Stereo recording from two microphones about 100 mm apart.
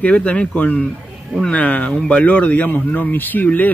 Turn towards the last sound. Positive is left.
turn(degrees=15)  # may be behind; listen again after turning